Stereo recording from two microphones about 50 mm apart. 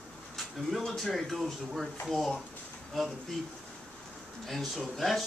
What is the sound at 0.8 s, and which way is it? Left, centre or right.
Speech, centre.